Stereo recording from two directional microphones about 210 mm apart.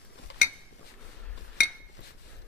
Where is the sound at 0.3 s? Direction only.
60° left (ahead or behind).